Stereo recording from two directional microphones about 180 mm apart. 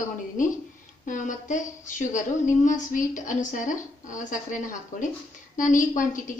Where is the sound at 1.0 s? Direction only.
45° left (ahead or behind).